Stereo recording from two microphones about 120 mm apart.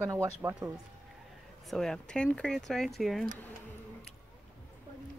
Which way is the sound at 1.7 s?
5° left (ahead or behind).